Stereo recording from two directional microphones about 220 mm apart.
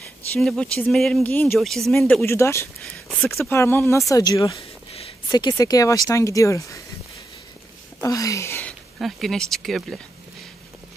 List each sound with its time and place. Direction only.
0.3 s speech: centre (ahead or behind)
2.2 s speech: 10° left (ahead or behind)
8.0 s speech: 15° left (ahead or behind)